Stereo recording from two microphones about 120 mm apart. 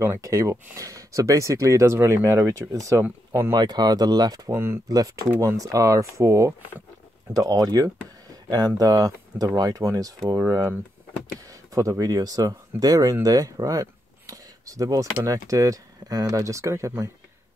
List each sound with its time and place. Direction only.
0.0 s speech: 25° right (ahead or behind)
3.5 s speech: 35° right (ahead or behind)
5.3 s speech: 15° right (ahead or behind)
5.6 s speech: 30° right (ahead or behind)